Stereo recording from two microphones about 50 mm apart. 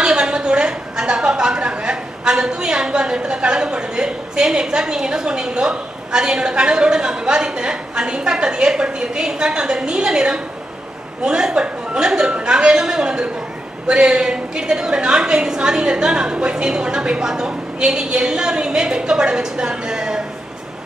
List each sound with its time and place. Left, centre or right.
0.0 s a woman's voice: centre